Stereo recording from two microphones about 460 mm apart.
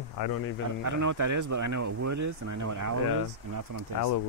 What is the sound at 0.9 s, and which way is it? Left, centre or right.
Speech, right.